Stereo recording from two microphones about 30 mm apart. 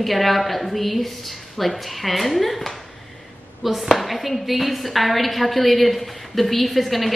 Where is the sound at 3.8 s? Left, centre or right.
Centre.